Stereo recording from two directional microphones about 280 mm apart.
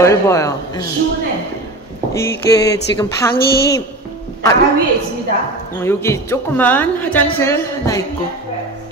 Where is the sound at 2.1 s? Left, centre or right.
Centre.